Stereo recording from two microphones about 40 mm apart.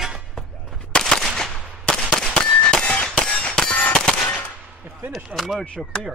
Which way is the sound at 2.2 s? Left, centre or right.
Left.